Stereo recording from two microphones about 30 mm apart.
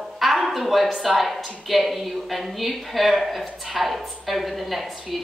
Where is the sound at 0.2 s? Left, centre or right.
Centre.